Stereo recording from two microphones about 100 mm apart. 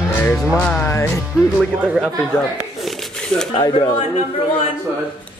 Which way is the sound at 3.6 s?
50° left (ahead or behind).